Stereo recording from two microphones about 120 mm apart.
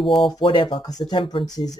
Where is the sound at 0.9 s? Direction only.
35° left (ahead or behind).